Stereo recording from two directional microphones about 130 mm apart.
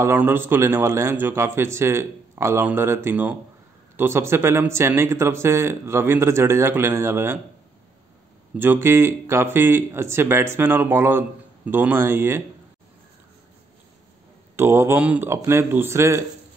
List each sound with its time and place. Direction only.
0.0 s a man's voice: 15° right (ahead or behind)
8.5 s speech: 15° right (ahead or behind)
14.6 s a man's voice: 20° right (ahead or behind)